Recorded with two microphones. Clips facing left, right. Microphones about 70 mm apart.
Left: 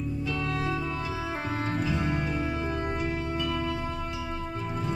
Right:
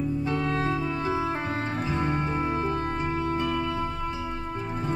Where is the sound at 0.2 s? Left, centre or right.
Right.